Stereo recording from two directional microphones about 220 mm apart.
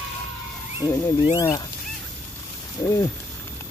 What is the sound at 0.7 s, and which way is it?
Speech, 20° left (ahead or behind).